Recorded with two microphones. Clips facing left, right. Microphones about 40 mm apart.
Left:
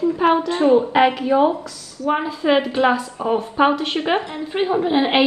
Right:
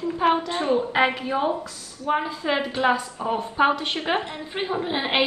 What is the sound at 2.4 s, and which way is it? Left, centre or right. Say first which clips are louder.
A woman's voice: left 7 dB; centre.